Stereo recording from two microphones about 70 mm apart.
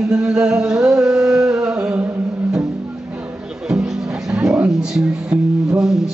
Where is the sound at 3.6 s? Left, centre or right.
Centre.